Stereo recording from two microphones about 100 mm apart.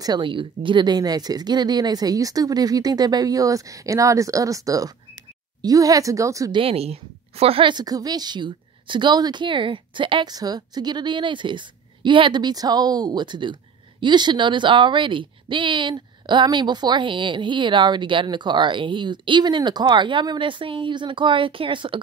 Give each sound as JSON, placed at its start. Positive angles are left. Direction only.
{"t": 0.0, "sound": "speech", "side_deg": -50}
{"t": 6.5, "sound": "a woman's voice", "side_deg": -75}
{"t": 7.7, "sound": "a woman's voice", "side_deg": -40}
{"t": 10.3, "sound": "a woman's voice", "side_deg": -40}